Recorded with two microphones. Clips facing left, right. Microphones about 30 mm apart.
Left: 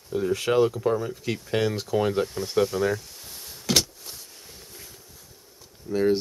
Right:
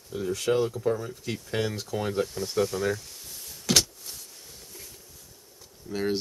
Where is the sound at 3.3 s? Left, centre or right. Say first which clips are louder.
Left 2 dB; left.